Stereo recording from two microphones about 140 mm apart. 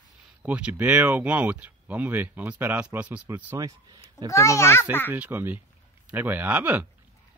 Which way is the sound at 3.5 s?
25° right (ahead or behind).